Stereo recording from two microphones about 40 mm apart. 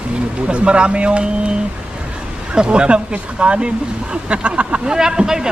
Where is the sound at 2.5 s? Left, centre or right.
Right.